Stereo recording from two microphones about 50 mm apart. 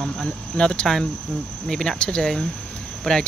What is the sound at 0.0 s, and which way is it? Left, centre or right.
Speech, centre.